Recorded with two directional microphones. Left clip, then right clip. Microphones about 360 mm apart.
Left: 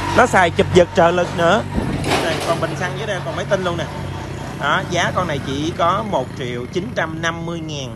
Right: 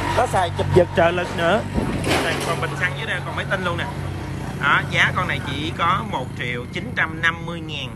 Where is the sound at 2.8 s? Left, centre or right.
Centre.